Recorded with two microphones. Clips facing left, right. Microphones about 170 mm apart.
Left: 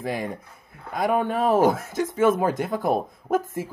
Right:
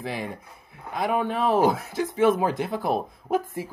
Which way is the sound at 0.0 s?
45° left (ahead or behind).